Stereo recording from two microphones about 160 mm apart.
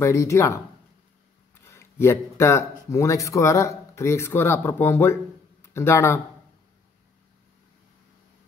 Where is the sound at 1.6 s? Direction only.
15° left (ahead or behind).